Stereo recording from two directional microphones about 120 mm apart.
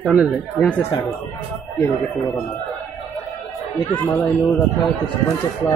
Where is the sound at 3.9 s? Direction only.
15° left (ahead or behind).